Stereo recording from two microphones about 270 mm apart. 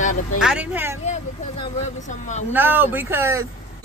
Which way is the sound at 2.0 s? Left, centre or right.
Left.